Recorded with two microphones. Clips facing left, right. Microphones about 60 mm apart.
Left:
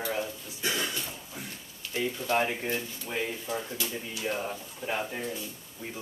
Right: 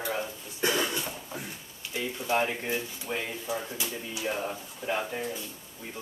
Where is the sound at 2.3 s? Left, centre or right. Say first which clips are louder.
Right 1 dB; centre.